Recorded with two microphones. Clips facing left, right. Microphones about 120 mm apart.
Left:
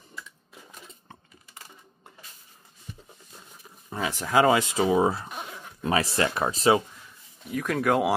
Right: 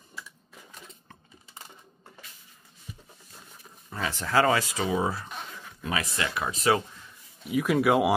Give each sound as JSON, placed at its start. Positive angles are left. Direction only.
{"t": 3.9, "sound": "speech", "side_deg": 15}
{"t": 7.4, "sound": "speech", "side_deg": -5}